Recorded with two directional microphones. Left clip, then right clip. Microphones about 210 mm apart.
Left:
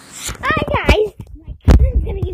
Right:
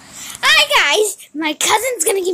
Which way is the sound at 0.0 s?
10° left (ahead or behind).